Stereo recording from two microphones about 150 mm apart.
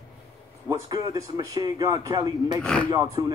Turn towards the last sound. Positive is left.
turn(degrees=-25)  # may be behind; listen again after turning